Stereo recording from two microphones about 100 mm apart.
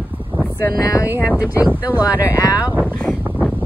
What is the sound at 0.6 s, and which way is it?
Speech, 35° left (ahead or behind).